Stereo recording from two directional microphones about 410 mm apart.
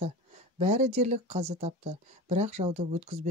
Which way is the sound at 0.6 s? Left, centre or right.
Centre.